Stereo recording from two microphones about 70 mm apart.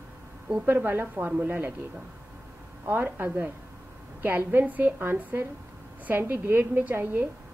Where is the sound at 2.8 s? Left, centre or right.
Right.